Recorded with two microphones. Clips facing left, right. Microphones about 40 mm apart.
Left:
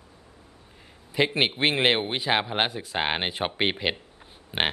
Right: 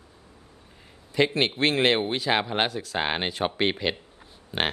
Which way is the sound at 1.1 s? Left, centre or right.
Centre.